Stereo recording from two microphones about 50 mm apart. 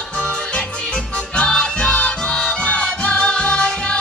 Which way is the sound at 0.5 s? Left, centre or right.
Centre.